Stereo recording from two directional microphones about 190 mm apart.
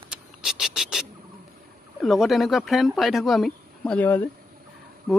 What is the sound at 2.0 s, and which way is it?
Speech, centre (ahead or behind).